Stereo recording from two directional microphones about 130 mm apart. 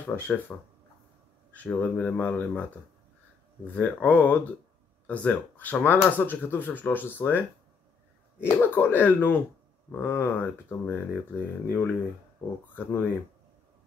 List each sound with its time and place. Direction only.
0.0 s speech: 10° left (ahead or behind)
1.5 s speech: 10° left (ahead or behind)
3.6 s speech: 10° left (ahead or behind)
8.5 s speech: 15° left (ahead or behind)